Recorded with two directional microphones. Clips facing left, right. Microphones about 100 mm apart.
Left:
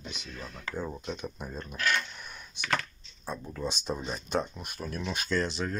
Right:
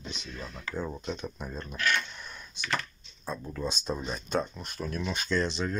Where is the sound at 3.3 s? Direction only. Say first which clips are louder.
Right 1 dB; 15° left (ahead or behind).